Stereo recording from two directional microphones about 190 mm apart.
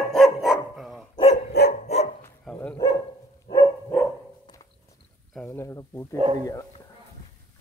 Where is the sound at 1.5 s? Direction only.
55° left (ahead or behind).